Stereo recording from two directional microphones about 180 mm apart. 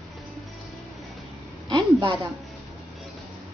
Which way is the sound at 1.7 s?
25° right (ahead or behind).